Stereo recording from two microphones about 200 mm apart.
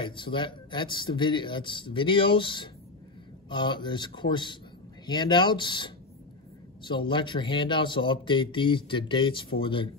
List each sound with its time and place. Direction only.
0.0 s speech: 25° left (ahead or behind)